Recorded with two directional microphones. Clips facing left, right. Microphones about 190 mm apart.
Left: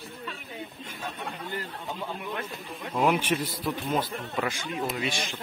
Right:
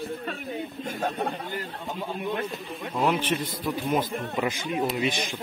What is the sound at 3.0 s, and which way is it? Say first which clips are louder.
Speech: even; 10° left (ahead or behind).